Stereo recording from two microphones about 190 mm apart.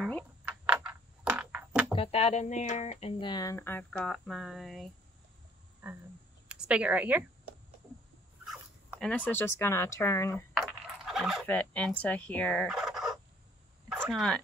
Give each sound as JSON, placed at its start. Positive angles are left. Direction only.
{"t": 0.7, "sound": "a sound", "side_deg": -10}
{"t": 2.0, "sound": "speech", "side_deg": 30}
{"t": 6.5, "sound": "speech", "side_deg": -5}
{"t": 9.0, "sound": "speech", "side_deg": 10}
{"t": 10.5, "sound": "fowl", "side_deg": 0}
{"t": 13.8, "sound": "a sound", "side_deg": -5}